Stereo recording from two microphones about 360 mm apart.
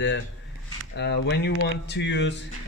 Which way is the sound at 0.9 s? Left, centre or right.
Left.